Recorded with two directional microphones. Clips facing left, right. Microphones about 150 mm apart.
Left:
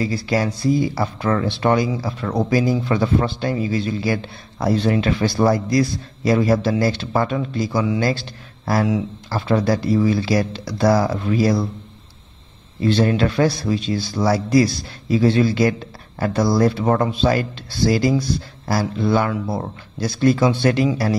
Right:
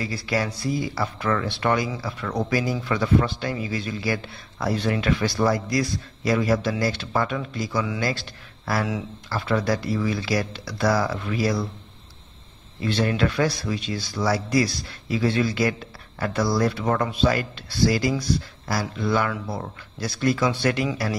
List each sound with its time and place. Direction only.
0.0 s a man's voice: 30° left (ahead or behind)
12.8 s a man's voice: 30° left (ahead or behind)